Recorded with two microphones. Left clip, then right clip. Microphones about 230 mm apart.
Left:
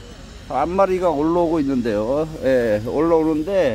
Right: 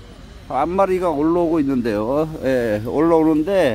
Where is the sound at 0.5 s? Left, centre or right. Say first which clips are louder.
Even; centre.